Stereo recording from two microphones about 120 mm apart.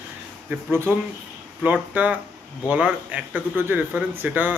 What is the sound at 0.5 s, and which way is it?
Speech, 20° right (ahead or behind).